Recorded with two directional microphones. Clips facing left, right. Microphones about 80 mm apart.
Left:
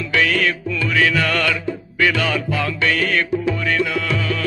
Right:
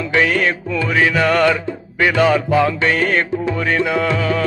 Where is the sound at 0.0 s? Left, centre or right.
Right.